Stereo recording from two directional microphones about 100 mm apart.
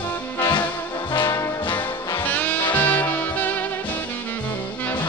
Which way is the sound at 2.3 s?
15° left (ahead or behind).